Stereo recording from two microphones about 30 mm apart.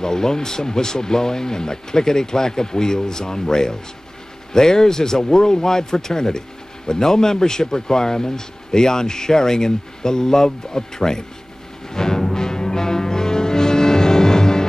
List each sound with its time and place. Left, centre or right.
0.0 s speech: left
11.9 s music: left